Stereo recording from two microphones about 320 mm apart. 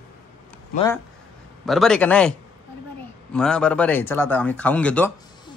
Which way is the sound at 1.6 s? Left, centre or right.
Centre.